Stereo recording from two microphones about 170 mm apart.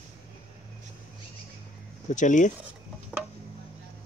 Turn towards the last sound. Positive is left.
turn(degrees=-5)  # may be behind; listen again after turning